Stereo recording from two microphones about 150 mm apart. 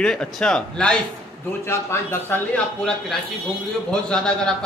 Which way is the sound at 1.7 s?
15° left (ahead or behind).